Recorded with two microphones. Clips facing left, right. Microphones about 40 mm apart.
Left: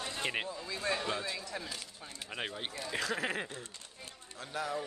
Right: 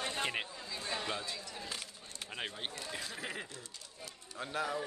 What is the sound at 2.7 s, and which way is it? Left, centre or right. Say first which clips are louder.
Speech: left 7 dB; left.